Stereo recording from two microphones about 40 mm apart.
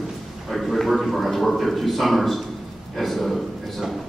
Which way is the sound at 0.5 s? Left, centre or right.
Centre.